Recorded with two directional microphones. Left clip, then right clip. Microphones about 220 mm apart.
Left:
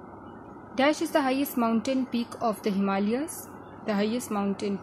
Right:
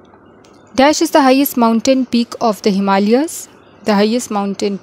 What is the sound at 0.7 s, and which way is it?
Speech, 40° right (ahead or behind).